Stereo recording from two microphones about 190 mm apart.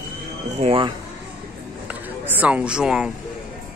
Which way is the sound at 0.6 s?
30° right (ahead or behind).